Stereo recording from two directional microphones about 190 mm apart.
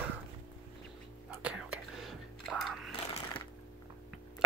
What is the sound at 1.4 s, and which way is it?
Whispering, 5° right (ahead or behind).